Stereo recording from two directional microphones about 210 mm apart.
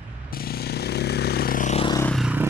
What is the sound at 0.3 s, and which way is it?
Vehicle, 45° left (ahead or behind).